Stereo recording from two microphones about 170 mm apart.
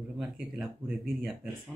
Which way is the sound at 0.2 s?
Centre (ahead or behind).